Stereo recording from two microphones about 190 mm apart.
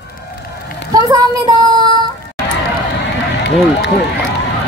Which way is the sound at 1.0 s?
20° right (ahead or behind).